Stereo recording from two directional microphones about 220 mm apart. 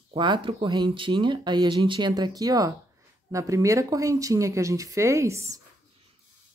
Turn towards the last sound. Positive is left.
turn(degrees=-15)  # may be behind; listen again after turning